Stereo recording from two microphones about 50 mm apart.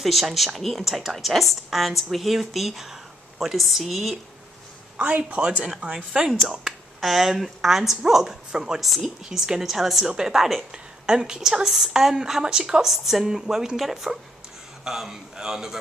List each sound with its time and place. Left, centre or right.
0.0 s speech: centre
4.9 s speech: right
6.5 s a woman's voice: centre